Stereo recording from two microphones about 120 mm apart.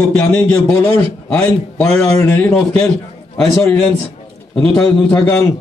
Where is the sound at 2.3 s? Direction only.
15° left (ahead or behind).